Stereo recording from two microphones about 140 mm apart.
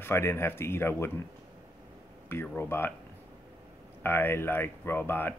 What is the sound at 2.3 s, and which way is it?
Speech, 15° left (ahead or behind).